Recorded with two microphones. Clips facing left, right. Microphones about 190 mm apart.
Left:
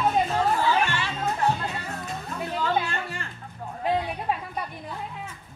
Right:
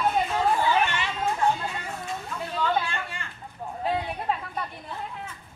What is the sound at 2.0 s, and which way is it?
Music, 40° left (ahead or behind).